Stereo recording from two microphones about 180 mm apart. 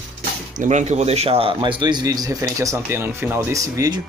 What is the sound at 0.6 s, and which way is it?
A man's voice, 40° right (ahead or behind).